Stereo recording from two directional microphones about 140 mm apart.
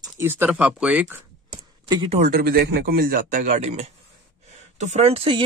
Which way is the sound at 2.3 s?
90° right.